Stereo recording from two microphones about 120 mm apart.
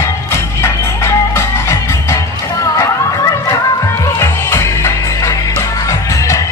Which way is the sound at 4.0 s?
25° left (ahead or behind).